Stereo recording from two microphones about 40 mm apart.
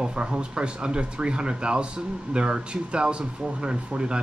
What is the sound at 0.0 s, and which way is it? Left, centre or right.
Speech, right.